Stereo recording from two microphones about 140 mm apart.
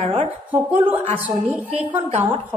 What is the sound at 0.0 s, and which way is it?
Speech, 50° right (ahead or behind).